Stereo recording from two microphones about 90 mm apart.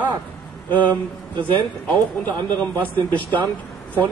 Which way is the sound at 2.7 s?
15° left (ahead or behind).